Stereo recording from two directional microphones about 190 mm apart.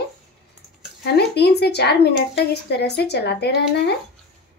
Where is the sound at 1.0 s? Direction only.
60° left (ahead or behind).